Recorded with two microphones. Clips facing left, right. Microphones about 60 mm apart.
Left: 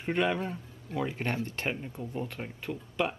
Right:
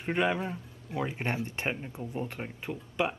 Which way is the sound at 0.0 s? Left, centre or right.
Centre.